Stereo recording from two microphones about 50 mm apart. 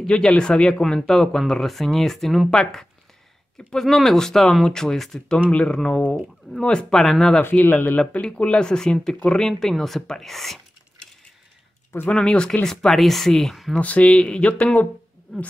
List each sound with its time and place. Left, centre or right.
0.0 s speech: centre
5.5 s speech: centre
7.7 s speech: left
8.0 s speech: centre
12.1 s speech: centre
13.7 s speech: left